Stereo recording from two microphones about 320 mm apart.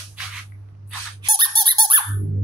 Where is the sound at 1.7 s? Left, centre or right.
Centre.